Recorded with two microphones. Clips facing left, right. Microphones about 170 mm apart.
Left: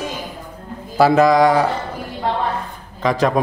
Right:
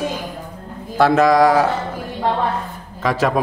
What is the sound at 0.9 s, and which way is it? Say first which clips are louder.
Speech: left 1 dB; centre (ahead or behind).